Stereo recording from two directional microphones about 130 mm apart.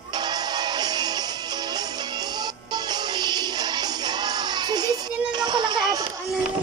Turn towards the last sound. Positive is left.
turn(degrees=-30)  # may be behind; listen again after turning